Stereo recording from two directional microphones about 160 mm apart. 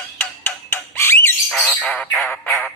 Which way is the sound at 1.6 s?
Centre (ahead or behind).